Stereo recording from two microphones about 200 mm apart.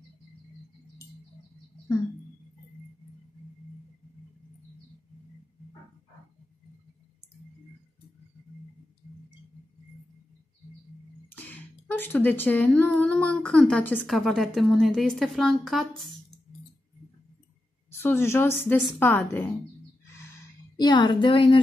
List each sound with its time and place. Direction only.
11.2 s speech: 10° left (ahead or behind)
17.9 s a woman's voice: 10° left (ahead or behind)
20.7 s speech: 20° left (ahead or behind)